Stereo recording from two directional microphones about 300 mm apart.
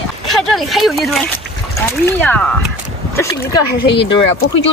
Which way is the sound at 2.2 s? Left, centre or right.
Centre.